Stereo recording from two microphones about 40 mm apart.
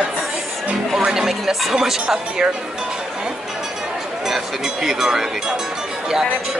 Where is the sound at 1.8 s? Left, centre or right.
Centre.